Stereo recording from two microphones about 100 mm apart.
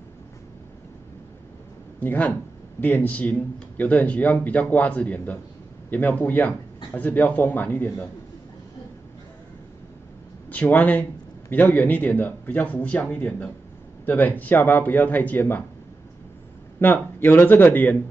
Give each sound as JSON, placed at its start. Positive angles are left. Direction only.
{"t": 2.0, "sound": "speech", "side_deg": 15}
{"t": 10.5, "sound": "speech", "side_deg": 15}
{"t": 16.8, "sound": "speech", "side_deg": 20}